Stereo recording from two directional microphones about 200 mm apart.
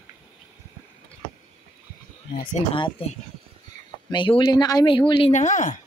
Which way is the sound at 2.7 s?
25° left (ahead or behind).